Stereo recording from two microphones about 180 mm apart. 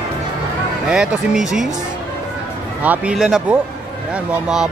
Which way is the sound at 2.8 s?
5° right (ahead or behind).